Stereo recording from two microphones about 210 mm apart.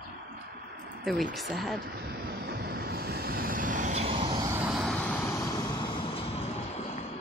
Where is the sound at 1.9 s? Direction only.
50° right (ahead or behind); by 4.4 s 25° right (ahead or behind).